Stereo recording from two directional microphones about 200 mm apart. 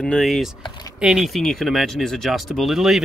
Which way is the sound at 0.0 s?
Centre (ahead or behind).